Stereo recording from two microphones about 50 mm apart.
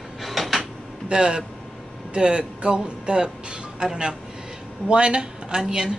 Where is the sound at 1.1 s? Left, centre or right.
Centre.